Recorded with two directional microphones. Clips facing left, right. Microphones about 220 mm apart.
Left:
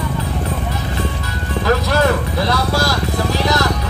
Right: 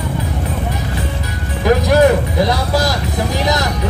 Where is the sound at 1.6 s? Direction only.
15° right (ahead or behind).